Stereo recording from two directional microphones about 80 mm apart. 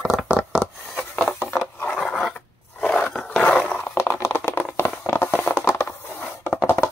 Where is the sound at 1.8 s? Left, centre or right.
Centre.